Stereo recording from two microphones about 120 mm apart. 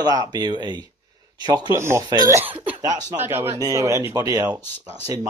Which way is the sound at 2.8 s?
30° right (ahead or behind).